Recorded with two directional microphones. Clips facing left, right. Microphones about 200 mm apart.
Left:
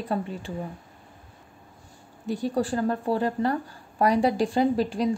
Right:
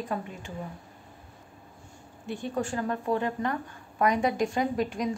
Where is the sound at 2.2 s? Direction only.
40° left (ahead or behind).